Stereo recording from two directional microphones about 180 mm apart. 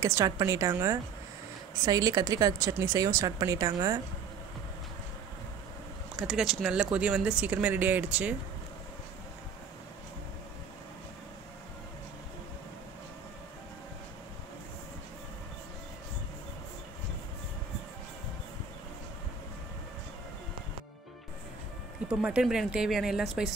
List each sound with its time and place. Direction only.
0.0 s speech: 15° right (ahead or behind)
6.1 s speech: centre (ahead or behind)
22.2 s speech: 5° right (ahead or behind)